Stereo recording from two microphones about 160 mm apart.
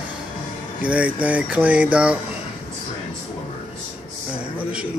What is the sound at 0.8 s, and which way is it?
Speech, 10° right (ahead or behind).